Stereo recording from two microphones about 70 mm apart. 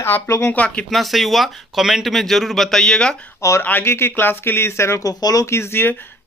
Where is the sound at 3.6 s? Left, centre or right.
Left.